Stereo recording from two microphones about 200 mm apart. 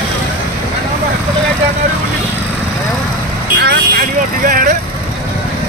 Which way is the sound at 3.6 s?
60° right (ahead or behind).